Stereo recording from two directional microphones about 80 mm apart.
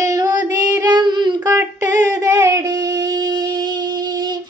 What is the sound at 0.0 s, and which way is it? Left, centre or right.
Child singing, right.